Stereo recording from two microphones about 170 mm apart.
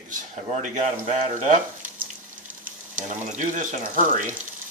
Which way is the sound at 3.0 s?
50° right (ahead or behind).